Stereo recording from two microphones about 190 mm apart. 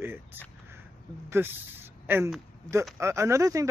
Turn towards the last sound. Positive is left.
turn(degrees=-15)  # may be behind; listen again after turning